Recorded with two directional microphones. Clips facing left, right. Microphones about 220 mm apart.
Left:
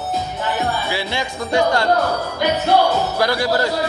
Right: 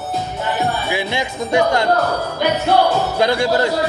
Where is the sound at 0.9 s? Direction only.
20° right (ahead or behind).